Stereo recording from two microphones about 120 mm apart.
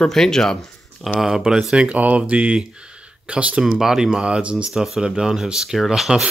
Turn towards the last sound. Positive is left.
turn(degrees=-5)  # may be behind; listen again after turning